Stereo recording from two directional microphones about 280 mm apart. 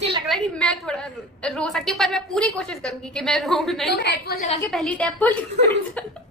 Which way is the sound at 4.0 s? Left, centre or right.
Left.